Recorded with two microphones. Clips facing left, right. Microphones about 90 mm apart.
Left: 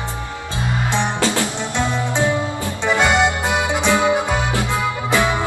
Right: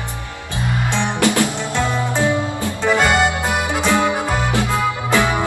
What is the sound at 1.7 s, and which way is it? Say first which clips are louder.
Music: right 1 dB; 20° left (ahead or behind).